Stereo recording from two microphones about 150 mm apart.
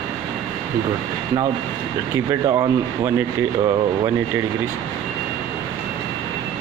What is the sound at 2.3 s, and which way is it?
Speech, 20° right (ahead or behind).